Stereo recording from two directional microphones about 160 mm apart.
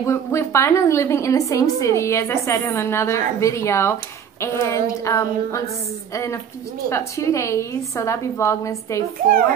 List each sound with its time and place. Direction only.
0.0 s a woman's voice: 15° left (ahead or behind)